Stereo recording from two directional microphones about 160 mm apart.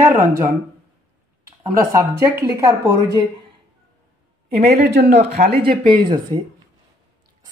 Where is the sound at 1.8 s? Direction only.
20° right (ahead or behind).